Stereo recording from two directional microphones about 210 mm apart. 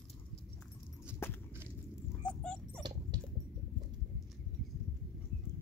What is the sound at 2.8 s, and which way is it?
Dog, 20° right (ahead or behind).